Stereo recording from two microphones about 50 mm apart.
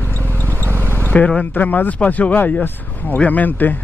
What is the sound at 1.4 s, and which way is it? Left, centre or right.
Speech, left.